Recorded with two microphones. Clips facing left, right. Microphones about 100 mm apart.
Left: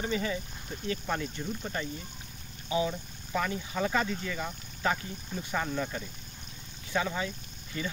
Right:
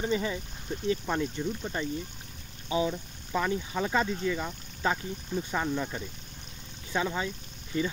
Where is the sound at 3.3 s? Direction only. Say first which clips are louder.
Right 2 dB; 20° right (ahead or behind).